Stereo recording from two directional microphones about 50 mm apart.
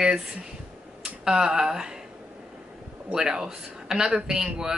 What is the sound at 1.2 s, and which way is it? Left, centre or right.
Speech, centre.